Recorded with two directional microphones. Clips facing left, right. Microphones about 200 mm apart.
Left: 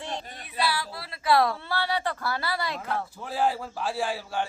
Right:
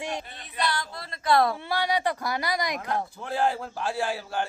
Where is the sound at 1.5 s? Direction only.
15° right (ahead or behind).